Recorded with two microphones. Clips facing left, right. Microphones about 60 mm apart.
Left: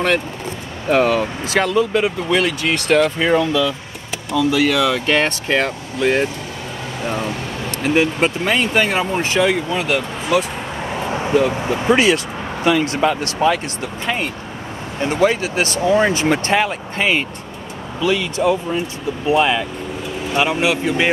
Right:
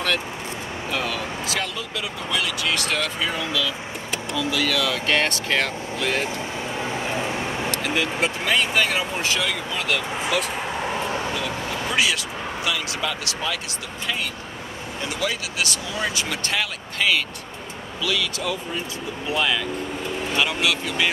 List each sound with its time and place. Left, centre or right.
0.8 s speech: left
4.5 s speech: left
7.8 s speech: left
9.8 s speech: centre
10.3 s speech: centre
11.1 s speech: left